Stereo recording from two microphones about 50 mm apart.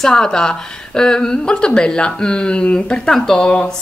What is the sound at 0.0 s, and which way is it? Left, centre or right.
Speech, centre.